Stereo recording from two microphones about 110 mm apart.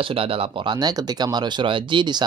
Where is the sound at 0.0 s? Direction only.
55° right (ahead or behind).